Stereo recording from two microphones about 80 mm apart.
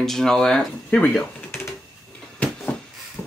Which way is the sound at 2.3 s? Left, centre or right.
Centre.